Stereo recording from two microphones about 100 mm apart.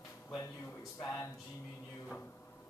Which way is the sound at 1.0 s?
30° left (ahead or behind).